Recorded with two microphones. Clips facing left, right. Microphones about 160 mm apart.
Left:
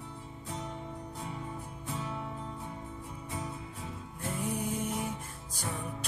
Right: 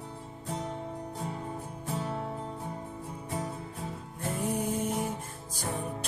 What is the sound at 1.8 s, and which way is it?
Music, 40° right (ahead or behind).